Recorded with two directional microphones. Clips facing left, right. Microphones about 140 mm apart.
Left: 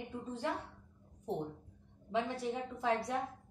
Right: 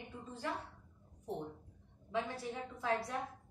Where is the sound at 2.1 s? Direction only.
25° left (ahead or behind).